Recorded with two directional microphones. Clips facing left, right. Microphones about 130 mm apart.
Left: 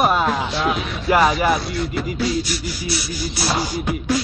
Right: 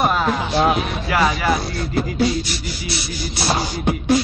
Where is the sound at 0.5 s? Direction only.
50° right (ahead or behind).